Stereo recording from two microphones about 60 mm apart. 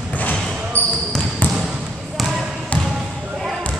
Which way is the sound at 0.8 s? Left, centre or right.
Left.